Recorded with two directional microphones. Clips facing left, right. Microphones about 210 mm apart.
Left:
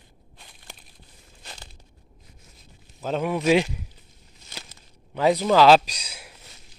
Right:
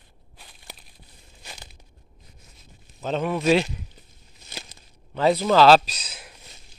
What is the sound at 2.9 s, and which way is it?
Speech, 10° left (ahead or behind).